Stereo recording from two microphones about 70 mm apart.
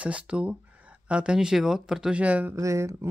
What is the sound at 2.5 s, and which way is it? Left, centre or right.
Speech, right.